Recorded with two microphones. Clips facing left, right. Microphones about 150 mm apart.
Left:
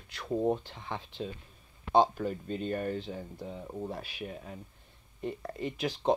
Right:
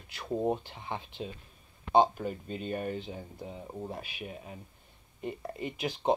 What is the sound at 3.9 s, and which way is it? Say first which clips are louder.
Speech: left 1 dB; centre (ahead or behind).